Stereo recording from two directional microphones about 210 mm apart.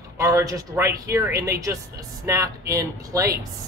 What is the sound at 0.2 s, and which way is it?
A man's voice, 15° right (ahead or behind).